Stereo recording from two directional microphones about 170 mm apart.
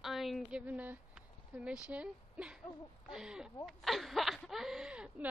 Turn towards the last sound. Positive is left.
turn(degrees=-5)  # may be behind; listen again after turning